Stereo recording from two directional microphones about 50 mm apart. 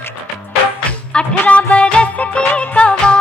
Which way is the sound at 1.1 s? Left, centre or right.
Left.